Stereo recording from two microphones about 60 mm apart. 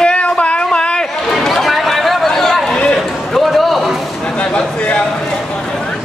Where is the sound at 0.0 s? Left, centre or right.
Centre.